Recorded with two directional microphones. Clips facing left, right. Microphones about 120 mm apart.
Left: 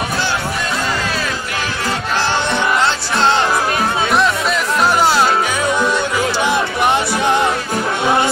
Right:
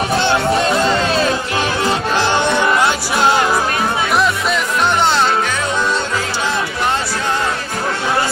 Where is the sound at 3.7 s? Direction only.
25° left (ahead or behind).